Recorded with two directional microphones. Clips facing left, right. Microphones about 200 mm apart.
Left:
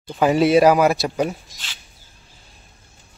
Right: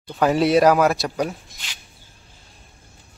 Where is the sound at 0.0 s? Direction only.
5° left (ahead or behind).